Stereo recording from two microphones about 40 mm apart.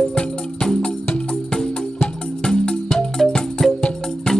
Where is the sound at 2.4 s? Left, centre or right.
Centre.